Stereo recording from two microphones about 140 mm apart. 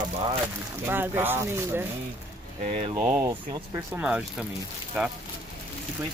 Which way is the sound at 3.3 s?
35° right (ahead or behind).